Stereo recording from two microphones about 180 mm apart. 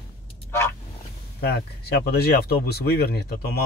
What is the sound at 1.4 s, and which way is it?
Speech, 65° left (ahead or behind).